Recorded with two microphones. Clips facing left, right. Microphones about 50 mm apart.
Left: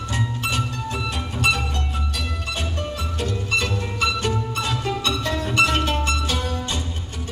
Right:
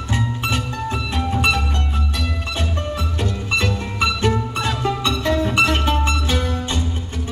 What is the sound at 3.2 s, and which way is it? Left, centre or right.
Music, right.